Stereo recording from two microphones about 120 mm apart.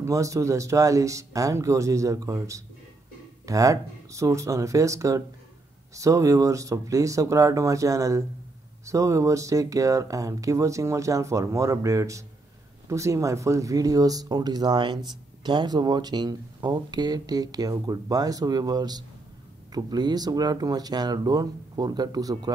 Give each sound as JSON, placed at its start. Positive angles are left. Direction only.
{"t": 0.0, "sound": "speech", "side_deg": -25}